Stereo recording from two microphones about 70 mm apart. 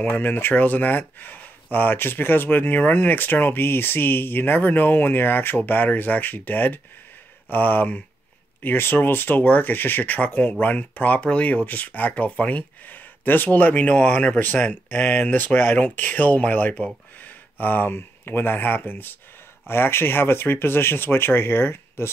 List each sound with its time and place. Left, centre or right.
0.0 s speech: left